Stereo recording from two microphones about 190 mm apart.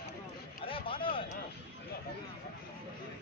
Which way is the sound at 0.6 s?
30° left (ahead or behind).